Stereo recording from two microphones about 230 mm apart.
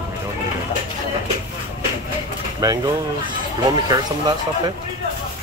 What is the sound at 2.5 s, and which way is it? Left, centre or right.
Speech, centre.